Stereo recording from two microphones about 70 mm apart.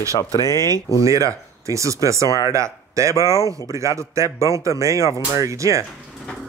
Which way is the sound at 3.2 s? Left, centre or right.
Left.